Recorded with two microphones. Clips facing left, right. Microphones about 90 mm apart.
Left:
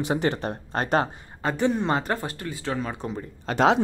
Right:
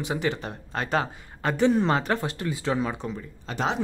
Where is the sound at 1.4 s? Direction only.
10° left (ahead or behind).